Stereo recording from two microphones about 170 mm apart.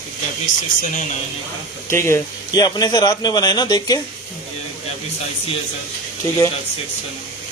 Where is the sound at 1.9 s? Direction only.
15° left (ahead or behind).